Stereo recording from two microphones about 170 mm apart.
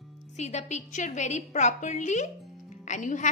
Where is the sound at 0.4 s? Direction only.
40° left (ahead or behind).